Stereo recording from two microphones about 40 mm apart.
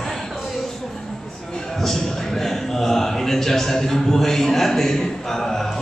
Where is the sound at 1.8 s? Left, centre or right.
Centre.